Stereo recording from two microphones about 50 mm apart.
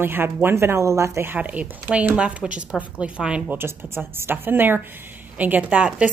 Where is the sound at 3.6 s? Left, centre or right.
Right.